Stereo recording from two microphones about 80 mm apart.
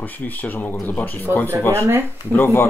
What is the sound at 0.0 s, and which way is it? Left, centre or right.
Speech, left.